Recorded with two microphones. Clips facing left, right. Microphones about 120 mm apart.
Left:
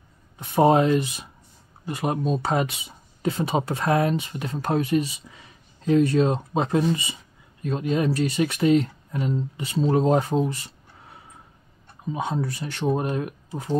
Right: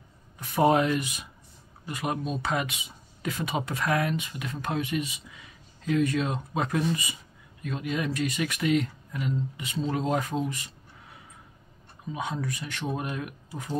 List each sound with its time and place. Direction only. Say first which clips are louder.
0.4 s speech: left 4 dB; 30° left (ahead or behind)
12.1 s speech: left 5 dB; 30° left (ahead or behind)